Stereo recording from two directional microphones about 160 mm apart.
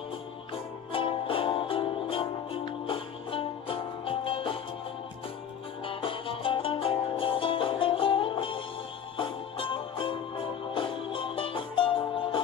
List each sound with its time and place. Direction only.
0.9 s music: 35° left (ahead or behind)
5.9 s music: 35° left (ahead or behind)